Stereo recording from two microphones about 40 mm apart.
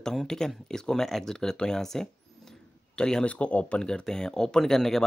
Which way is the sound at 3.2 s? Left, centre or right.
Left.